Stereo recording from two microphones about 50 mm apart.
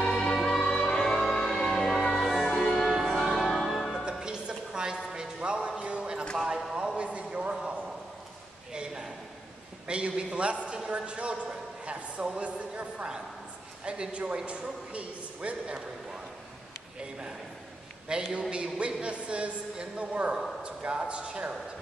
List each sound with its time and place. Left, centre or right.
0.0 s music: centre
2.9 s change ringing: centre
3.3 s music: centre
4.2 s a sound: centre
8.7 s a sound: centre
12.4 s a man's voice: right
18.1 s a man's voice: centre